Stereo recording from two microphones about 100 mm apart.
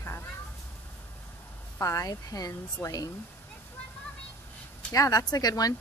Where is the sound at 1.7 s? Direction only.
35° left (ahead or behind).